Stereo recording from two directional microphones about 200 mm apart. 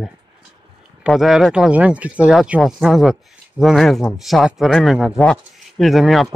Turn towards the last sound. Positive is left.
turn(degrees=0)  # may be behind; listen again after turning